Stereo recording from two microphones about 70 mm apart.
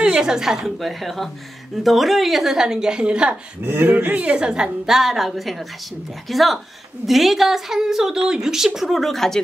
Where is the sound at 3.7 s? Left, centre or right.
Right.